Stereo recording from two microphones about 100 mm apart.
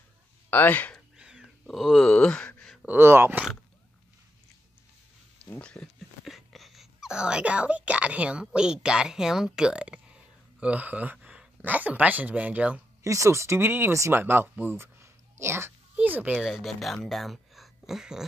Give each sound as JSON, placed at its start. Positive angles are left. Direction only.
{"t": 0.5, "sound": "speech", "side_deg": 20}
{"t": 1.1, "sound": "a sound", "side_deg": -5}
{"t": 2.9, "sound": "speech", "side_deg": -25}
{"t": 5.5, "sound": "speech", "side_deg": 10}
{"t": 5.9, "sound": "speech", "side_deg": 0}
{"t": 13.0, "sound": "speech", "side_deg": -30}
{"t": 16.4, "sound": "speech", "side_deg": 0}